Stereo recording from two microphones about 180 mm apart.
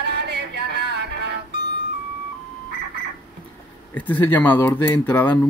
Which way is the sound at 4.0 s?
10° left (ahead or behind).